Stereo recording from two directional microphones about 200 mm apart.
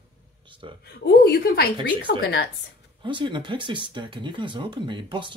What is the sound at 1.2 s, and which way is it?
A woman's voice, 50° left (ahead or behind).